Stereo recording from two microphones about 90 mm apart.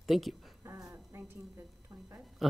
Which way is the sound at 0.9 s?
25° right (ahead or behind).